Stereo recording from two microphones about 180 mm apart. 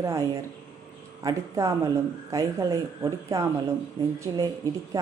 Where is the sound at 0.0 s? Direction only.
20° right (ahead or behind).